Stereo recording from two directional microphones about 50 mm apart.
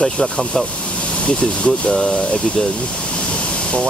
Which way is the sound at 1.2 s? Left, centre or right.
Left.